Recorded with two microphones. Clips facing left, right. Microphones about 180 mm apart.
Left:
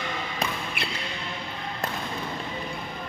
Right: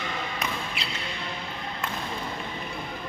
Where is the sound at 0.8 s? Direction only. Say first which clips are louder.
Left 3 dB; 55° left (ahead or behind).